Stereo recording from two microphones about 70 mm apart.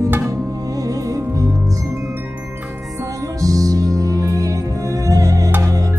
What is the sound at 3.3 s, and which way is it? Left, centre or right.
Music, right.